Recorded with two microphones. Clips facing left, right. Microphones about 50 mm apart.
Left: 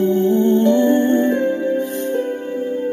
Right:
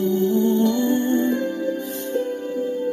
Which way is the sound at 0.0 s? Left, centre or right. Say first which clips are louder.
Left 4 dB; left.